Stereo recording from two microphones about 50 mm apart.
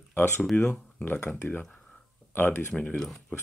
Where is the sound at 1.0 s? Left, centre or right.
Left.